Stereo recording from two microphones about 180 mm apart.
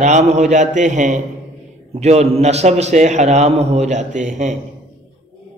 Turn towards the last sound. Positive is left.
turn(degrees=-40)  # may be behind; listen again after turning